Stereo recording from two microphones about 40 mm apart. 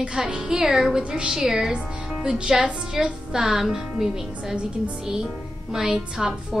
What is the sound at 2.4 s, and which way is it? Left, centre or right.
Speech, right.